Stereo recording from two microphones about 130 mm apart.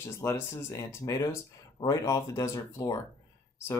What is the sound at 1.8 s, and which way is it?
Speech, 25° left (ahead or behind).